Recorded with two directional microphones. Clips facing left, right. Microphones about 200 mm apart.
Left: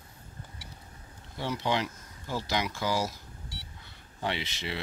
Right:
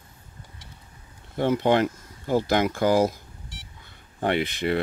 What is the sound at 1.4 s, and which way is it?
Speech, 55° right (ahead or behind).